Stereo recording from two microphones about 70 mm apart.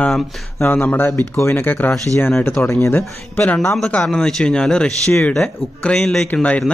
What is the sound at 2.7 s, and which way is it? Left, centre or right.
Speech, left.